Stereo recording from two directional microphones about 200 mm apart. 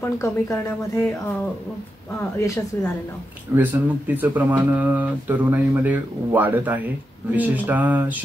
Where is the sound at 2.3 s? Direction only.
15° left (ahead or behind).